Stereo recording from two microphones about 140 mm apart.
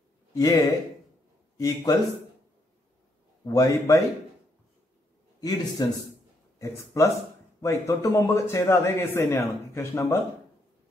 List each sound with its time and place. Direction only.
0.3 s a man's voice: 25° left (ahead or behind)
3.4 s a man's voice: 25° left (ahead or behind)
5.4 s a man's voice: 25° left (ahead or behind)